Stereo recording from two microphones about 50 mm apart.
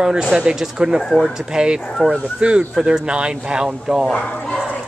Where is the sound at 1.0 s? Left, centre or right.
Centre.